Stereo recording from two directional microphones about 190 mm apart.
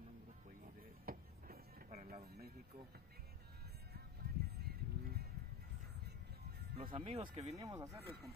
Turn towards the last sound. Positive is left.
turn(degrees=-20)  # may be behind; listen again after turning